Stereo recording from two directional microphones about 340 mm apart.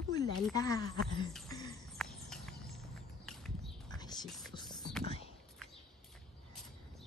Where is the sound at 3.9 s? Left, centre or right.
Centre.